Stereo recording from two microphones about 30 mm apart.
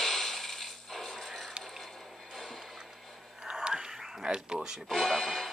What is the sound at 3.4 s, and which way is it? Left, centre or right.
Whispering, right.